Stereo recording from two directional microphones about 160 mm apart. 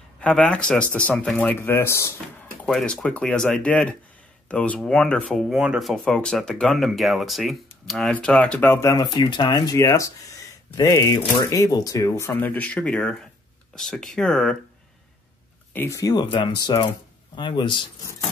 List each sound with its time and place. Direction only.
0.2 s speech: 5° left (ahead or behind)
2.6 s speech: 5° left (ahead or behind)
15.7 s speech: 15° left (ahead or behind)